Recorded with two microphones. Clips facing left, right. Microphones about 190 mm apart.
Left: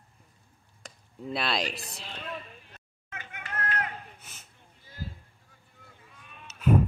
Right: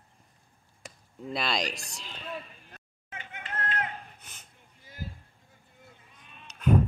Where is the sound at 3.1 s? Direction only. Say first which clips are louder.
Even; 25° right (ahead or behind).